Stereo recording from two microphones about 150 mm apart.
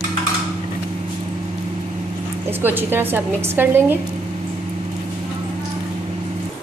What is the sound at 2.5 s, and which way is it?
A woman's voice, 15° right (ahead or behind).